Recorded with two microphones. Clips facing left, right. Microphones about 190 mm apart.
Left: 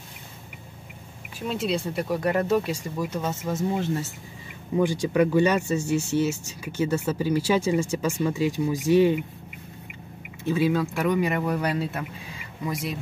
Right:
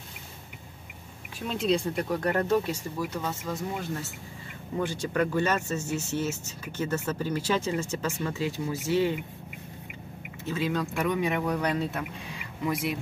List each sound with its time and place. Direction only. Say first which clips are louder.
1.5 s speech: right 1 dB; 5° left (ahead or behind)
3.1 s speech: left 4 dB; 20° left (ahead or behind)
4.7 s speech: left 6 dB; 15° left (ahead or behind)
10.4 s speech: left 6 dB; 10° left (ahead or behind)